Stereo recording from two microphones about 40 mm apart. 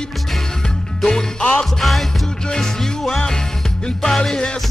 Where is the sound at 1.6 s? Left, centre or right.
Centre.